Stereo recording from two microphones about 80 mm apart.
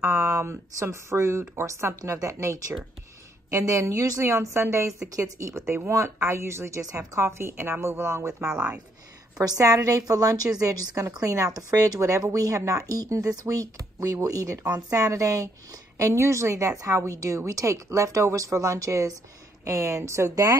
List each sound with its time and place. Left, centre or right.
0.0 s a woman's voice: right
2.0 s a woman's voice: right
8.5 s speech: centre
9.4 s a woman's voice: right